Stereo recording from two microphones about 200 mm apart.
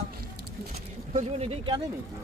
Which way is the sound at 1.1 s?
30° right (ahead or behind).